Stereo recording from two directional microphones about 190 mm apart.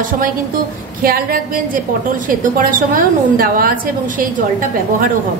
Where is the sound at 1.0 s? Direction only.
50° right (ahead or behind).